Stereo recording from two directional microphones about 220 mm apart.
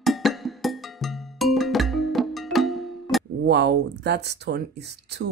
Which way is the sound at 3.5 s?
50° right (ahead or behind).